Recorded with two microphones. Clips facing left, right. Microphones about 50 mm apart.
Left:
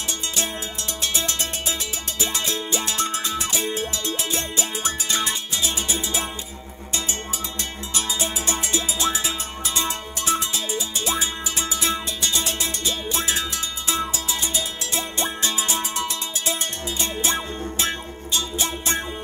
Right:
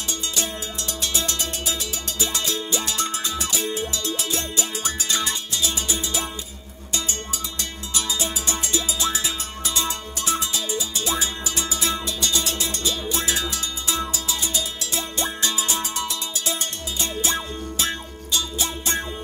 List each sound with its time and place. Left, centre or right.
1.0 s music: left
7.9 s music: left